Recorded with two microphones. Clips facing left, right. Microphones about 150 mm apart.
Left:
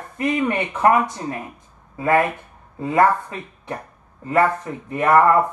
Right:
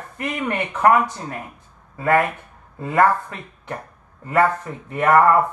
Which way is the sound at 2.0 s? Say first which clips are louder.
Even; 15° left (ahead or behind).